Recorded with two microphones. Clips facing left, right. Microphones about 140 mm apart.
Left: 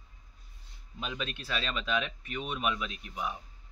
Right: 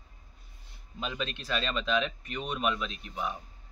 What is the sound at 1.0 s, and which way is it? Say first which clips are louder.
Speech: right 2 dB; 5° left (ahead or behind).